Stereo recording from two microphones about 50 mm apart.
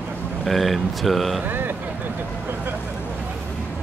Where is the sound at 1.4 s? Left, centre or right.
Right.